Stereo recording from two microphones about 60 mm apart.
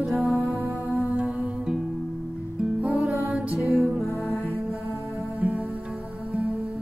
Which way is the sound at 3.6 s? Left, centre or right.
Centre.